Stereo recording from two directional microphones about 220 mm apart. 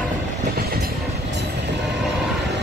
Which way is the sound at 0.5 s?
45° right (ahead or behind).